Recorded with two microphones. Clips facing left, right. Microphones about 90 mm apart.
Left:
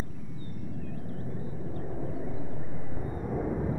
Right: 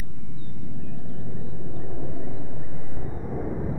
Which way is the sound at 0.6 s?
Centre (ahead or behind).